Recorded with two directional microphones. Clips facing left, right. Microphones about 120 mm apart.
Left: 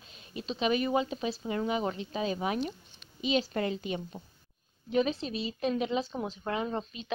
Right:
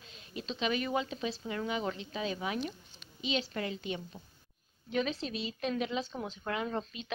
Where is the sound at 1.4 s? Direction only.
25° left (ahead or behind).